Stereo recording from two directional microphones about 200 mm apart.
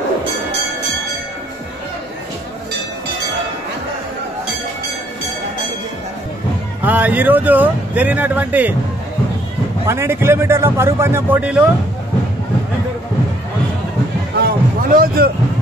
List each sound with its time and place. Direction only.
6.8 s speech: 10° right (ahead or behind)
9.8 s speech: 15° right (ahead or behind)
14.4 s a sound: 45° right (ahead or behind)